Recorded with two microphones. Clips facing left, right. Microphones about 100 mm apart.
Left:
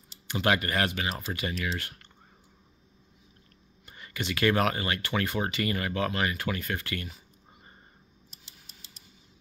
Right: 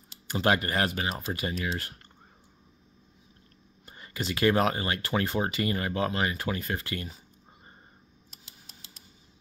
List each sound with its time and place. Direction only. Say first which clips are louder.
0.3 s speech: right 1 dB; 30° right (ahead or behind)
3.8 s speech: right 1 dB; 30° right (ahead or behind)